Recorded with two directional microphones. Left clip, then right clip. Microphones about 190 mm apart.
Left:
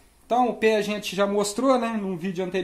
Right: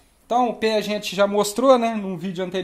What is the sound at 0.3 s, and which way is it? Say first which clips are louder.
Speech: right 1 dB; 25° right (ahead or behind).